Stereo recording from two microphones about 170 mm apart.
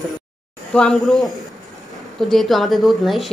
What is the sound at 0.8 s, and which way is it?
A woman's voice, 5° left (ahead or behind).